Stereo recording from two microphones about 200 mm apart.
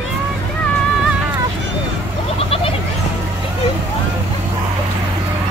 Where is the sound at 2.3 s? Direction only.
30° left (ahead or behind).